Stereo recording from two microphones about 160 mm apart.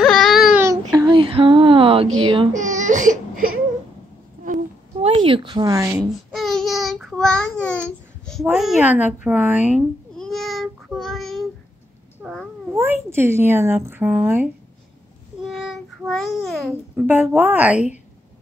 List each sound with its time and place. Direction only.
0.0 s a sound: centre (ahead or behind)
0.6 s a sound: 20° right (ahead or behind)
2.5 s baby cry: 50° right (ahead or behind)
5.0 s speech: 35° right (ahead or behind); by 6.0 s 15° right (ahead or behind)
6.3 s child singing: centre (ahead or behind)
8.5 s a woman's voice: 5° right (ahead or behind)
10.1 s child singing: 5° left (ahead or behind)
12.2 s cat: centre (ahead or behind)
12.7 s speech: 15° right (ahead or behind)
15.4 s child singing: centre (ahead or behind)
16.9 s a woman's voice: 10° right (ahead or behind)